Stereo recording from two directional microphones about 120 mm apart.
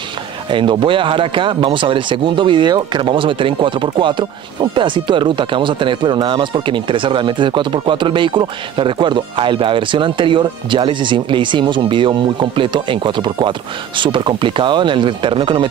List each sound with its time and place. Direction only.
0.5 s speech: 40° right (ahead or behind)